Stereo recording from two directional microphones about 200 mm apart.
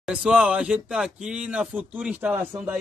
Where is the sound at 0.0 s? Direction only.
5° right (ahead or behind).